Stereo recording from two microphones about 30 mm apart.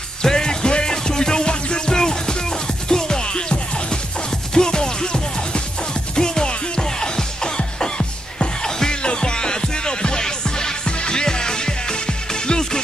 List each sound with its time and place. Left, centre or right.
0.2 s music: left
9.0 s music: left